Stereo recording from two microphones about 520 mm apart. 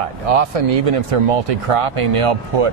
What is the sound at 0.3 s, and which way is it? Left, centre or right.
Speech, right.